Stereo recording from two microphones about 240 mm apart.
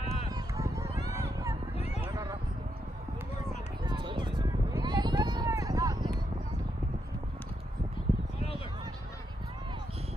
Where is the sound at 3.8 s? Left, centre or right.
Centre.